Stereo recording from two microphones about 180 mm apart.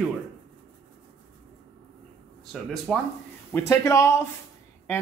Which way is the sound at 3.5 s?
15° left (ahead or behind).